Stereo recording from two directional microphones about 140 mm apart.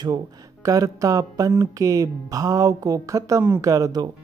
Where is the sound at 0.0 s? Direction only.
25° right (ahead or behind).